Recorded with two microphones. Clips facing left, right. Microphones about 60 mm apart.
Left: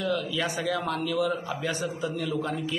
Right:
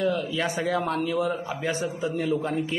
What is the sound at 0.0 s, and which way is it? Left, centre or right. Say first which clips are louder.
A man's voice: right 3 dB; right.